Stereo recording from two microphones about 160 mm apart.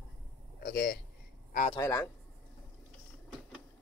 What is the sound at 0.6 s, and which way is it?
Speech, 70° left (ahead or behind).